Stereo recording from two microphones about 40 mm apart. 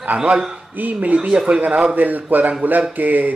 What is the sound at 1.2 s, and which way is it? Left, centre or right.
Speech, right.